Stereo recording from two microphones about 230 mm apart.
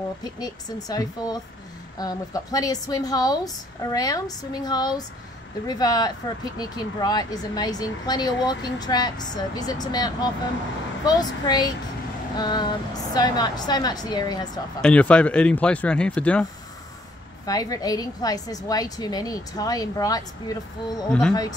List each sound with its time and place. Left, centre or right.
0.2 s speech: centre
14.8 s speech: centre
17.5 s speech: centre